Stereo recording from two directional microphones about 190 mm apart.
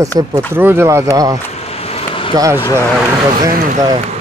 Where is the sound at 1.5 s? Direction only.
35° left (ahead or behind).